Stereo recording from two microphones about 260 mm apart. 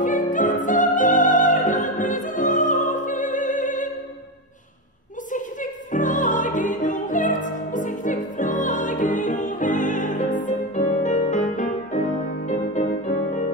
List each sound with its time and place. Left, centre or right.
0.0 s opera: left
5.3 s music: left